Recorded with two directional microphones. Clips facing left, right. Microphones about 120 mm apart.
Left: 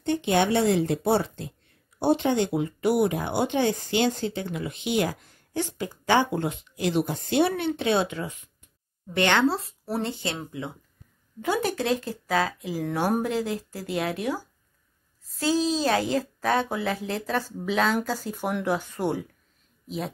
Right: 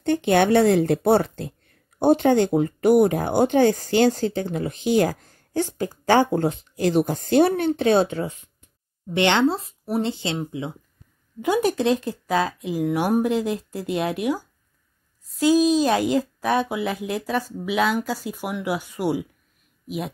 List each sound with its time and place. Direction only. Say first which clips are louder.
0.0 s a woman's voice: right 4 dB; 55° right (ahead or behind); by 19.2 s 5° right (ahead or behind)